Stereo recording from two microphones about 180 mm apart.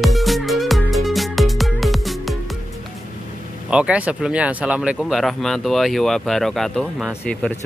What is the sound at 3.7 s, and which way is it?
Speech, 5° right (ahead or behind).